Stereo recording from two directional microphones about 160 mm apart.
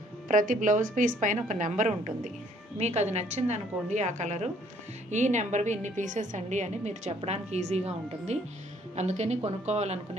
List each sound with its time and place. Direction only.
0.3 s a woman's voice: 55° right (ahead or behind)